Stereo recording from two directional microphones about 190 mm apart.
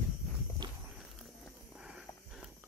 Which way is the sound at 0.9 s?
5° right (ahead or behind).